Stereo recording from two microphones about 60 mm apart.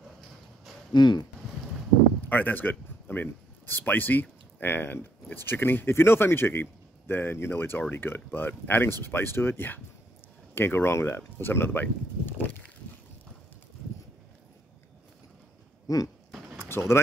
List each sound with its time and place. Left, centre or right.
2.2 s a man's voice: left
15.9 s a sound: left
16.5 s vehicle: left